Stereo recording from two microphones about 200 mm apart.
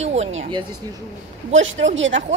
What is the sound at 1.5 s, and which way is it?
Speech, 70° right (ahead or behind).